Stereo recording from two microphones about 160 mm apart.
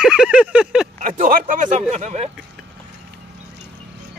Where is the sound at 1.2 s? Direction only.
60° right (ahead or behind).